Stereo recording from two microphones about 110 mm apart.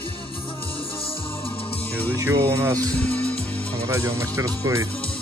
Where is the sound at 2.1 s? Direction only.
25° right (ahead or behind).